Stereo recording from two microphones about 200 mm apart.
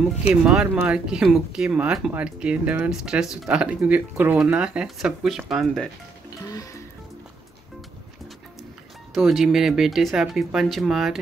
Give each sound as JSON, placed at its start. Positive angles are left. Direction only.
{"t": 0.3, "sound": "speech", "side_deg": -5}
{"t": 6.4, "sound": "music", "side_deg": 15}
{"t": 9.1, "sound": "speech", "side_deg": 0}